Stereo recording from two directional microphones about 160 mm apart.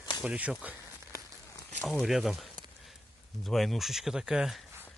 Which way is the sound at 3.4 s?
Centre (ahead or behind).